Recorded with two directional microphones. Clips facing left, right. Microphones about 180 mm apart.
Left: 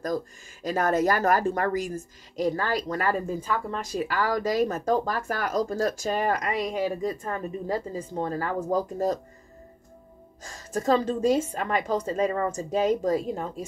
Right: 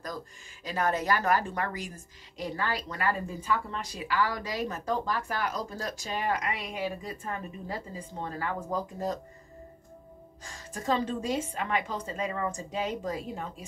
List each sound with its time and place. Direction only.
0.0 s speech: 45° left (ahead or behind)
10.4 s speech: 40° left (ahead or behind)